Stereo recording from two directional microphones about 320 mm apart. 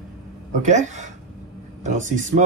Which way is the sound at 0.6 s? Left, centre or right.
Right.